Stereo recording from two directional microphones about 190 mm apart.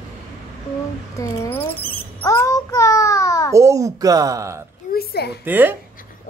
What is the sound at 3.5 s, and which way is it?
A woman's voice, 15° right (ahead or behind).